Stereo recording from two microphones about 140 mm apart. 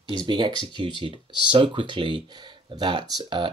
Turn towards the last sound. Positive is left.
turn(degrees=-35)  # may be behind; listen again after turning